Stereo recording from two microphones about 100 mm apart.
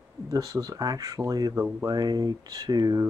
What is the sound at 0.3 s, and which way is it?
Speech, 35° right (ahead or behind).